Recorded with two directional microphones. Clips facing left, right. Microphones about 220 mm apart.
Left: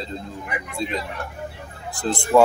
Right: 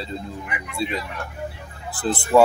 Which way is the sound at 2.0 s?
5° right (ahead or behind).